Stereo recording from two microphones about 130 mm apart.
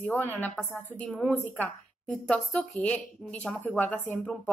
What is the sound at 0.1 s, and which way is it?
Speech, 15° left (ahead or behind).